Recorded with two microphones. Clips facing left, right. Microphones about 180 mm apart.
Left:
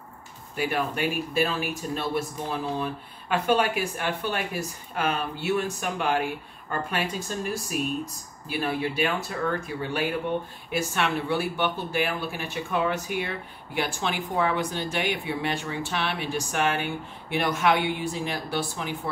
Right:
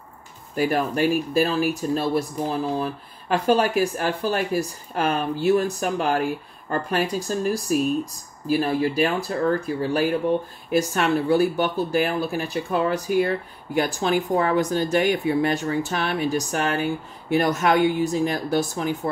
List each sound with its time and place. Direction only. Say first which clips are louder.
0.6 s speech: right 6 dB; 40° right (ahead or behind)